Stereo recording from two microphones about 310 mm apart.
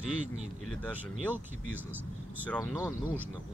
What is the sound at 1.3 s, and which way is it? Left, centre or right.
Speech, centre.